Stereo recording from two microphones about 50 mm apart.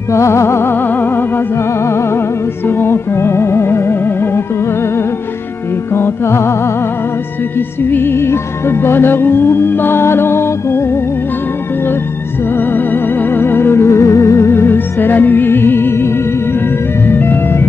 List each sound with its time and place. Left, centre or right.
0.1 s music: left
1.9 s music: left
2.6 s music: left
5.9 s music: left
7.5 s music: left
12.5 s music: left
13.8 s music: left
17.1 s music: left